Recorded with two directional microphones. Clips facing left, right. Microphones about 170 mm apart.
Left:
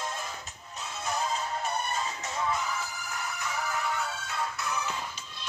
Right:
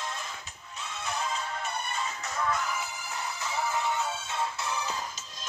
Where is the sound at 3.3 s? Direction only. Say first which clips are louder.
Right 3 dB; 25° right (ahead or behind).